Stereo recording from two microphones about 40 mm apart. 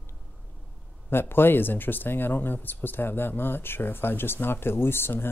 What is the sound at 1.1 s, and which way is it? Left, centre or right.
Speech, left.